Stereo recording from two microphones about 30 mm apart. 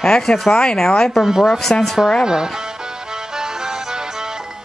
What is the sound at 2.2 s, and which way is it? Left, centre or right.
Music, right.